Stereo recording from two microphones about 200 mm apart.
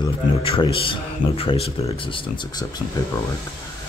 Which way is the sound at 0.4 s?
25° left (ahead or behind).